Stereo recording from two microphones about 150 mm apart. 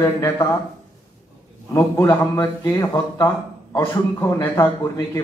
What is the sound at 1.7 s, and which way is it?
A man's voice, 25° left (ahead or behind).